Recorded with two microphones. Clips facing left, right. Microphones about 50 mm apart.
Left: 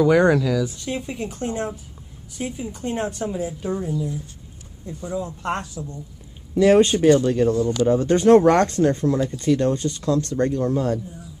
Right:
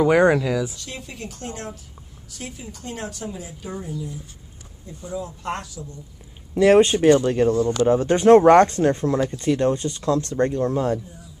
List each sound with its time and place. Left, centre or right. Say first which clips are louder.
0.0 s speech: even; centre
0.7 s a woman's voice: left 8 dB; left
5.4 s speech: left 3 dB; left
6.5 s speech: even; right